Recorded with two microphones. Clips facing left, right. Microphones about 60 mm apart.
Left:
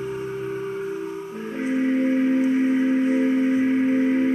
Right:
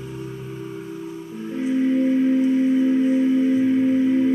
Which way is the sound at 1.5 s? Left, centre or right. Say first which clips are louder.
Right 2 dB; left.